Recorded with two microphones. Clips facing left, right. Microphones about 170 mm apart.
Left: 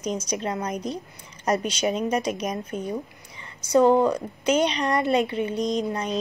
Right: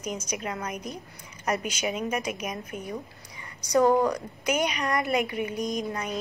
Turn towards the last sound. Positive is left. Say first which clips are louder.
# left 5 dB
turn(degrees=30)  # may be behind; listen again after turning